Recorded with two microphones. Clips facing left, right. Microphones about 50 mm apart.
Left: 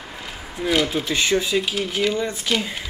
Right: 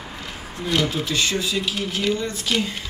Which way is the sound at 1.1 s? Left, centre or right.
Left.